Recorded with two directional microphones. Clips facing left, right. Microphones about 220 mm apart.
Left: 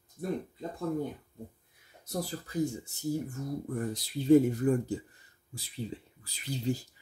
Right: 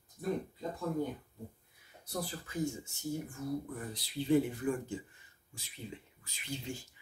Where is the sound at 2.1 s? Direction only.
40° left (ahead or behind).